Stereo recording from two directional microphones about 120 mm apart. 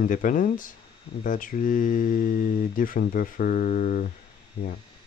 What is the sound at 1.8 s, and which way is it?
Speech, 90° left.